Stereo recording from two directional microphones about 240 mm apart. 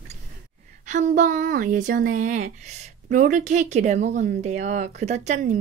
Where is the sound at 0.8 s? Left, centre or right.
Right.